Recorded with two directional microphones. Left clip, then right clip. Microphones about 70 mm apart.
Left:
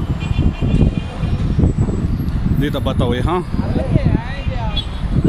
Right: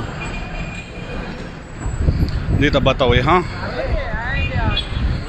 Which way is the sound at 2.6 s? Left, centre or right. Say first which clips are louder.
Right 6 dB; left.